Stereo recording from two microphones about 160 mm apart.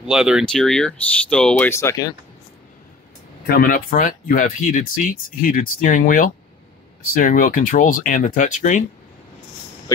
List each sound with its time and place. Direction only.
0.0 s speech: 5° right (ahead or behind); by 2.1 s 20° left (ahead or behind)
3.4 s speech: 65° left (ahead or behind)